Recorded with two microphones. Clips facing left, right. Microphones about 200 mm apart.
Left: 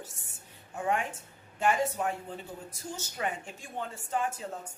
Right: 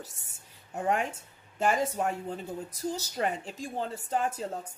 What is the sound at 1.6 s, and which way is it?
A woman's voice, 40° right (ahead or behind).